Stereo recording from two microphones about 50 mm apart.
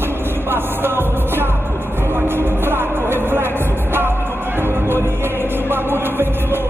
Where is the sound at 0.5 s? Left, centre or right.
Right.